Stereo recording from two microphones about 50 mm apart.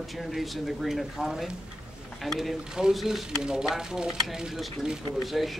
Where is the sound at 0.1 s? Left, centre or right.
Centre.